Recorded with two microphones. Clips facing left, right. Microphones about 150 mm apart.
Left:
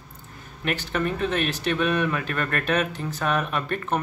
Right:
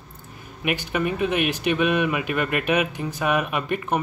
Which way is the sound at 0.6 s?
10° right (ahead or behind).